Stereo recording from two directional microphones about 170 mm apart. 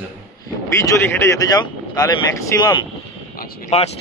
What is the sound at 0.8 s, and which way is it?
Speech, 20° left (ahead or behind).